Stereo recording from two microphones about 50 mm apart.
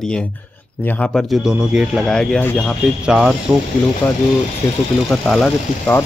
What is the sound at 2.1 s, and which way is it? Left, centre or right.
Speech, centre.